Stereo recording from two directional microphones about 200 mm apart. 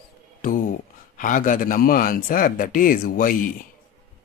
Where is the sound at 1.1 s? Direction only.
40° left (ahead or behind).